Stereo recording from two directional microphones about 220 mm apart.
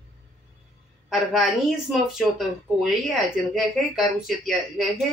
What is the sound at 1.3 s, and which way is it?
Speech, centre (ahead or behind).